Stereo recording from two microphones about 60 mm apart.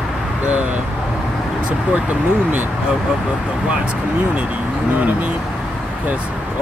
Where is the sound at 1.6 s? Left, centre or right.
Right.